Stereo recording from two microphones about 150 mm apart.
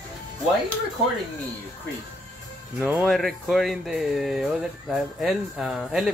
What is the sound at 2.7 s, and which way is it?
Speech, 10° right (ahead or behind).